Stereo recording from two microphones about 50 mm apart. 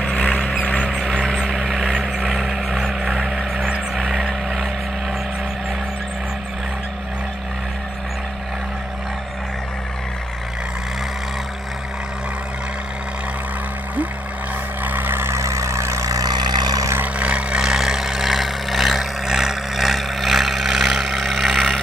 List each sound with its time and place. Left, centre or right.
0.0 s vehicle: left
0.8 s vehicle: centre
2.3 s vehicle: centre
14.9 s vehicle: right
15.3 s vehicle: right
17.0 s vehicle: right; by 21.8 s centre